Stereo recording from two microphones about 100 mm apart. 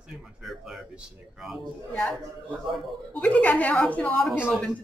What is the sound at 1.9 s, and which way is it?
Speech, 5° left (ahead or behind).